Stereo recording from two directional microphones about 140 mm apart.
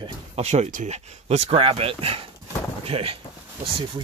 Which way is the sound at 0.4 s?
50° right (ahead or behind).